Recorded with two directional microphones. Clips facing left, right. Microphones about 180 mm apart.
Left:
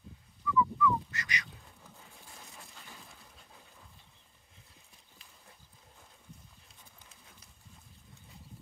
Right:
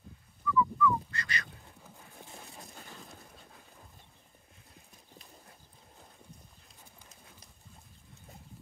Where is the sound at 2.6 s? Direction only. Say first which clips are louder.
Right 4 dB; 45° right (ahead or behind).